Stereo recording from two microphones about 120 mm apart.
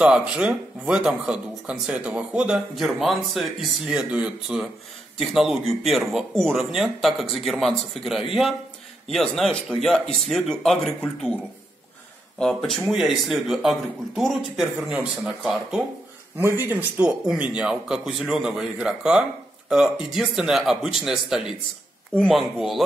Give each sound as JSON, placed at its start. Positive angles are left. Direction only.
{"t": 0.0, "sound": "speech", "side_deg": -10}
{"t": 12.4, "sound": "speech", "side_deg": 5}
{"t": 16.6, "sound": "speech", "side_deg": -15}